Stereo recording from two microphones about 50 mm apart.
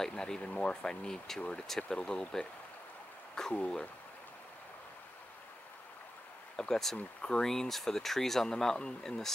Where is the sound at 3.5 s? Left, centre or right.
Left.